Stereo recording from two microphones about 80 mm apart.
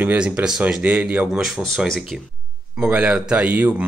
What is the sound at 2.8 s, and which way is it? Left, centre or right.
A man's voice, centre.